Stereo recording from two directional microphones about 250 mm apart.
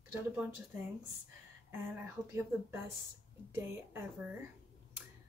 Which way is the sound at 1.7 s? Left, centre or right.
Centre.